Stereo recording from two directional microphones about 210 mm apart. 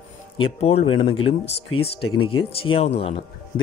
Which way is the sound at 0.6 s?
30° left (ahead or behind).